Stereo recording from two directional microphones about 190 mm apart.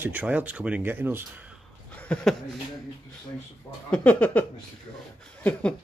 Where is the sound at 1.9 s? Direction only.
5° left (ahead or behind).